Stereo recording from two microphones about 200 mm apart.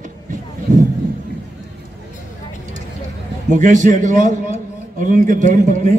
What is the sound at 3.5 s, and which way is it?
A man's voice, 40° right (ahead or behind).